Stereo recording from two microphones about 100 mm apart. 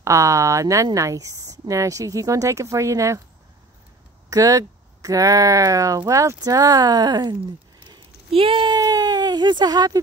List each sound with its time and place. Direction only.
0.0 s speech: 30° right (ahead or behind)
4.3 s speech: 35° right (ahead or behind)
8.3 s speech: 65° right (ahead or behind); by 9.9 s 40° right (ahead or behind)